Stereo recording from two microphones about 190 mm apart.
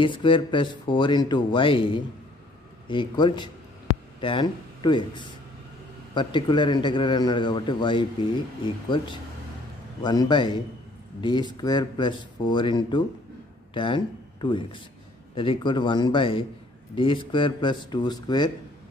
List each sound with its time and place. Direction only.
0.0 s speech: 25° left (ahead or behind)